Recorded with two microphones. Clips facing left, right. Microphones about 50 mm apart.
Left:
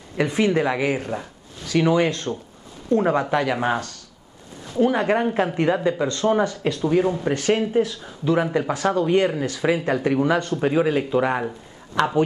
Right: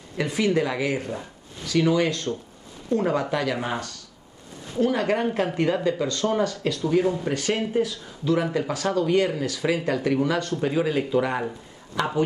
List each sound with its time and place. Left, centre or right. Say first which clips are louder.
0.2 s speech: left 3 dB; left
3.6 s speech: left 6 dB; left
4.7 s speech: left 3 dB; left